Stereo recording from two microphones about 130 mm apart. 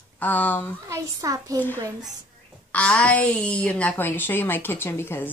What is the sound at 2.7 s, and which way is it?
A woman's voice, 10° left (ahead or behind).